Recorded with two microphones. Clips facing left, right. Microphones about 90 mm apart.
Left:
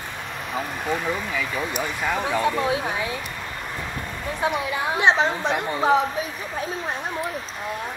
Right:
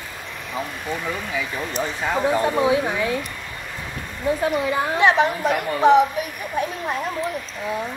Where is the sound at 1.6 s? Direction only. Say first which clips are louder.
Right 1 dB; 15° left (ahead or behind).